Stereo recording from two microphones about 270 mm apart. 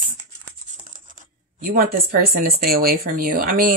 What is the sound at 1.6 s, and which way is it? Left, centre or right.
Speech, right.